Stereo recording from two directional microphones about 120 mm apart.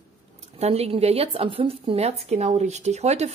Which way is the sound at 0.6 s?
60° right (ahead or behind).